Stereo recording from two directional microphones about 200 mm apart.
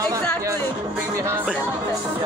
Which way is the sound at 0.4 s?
15° right (ahead or behind).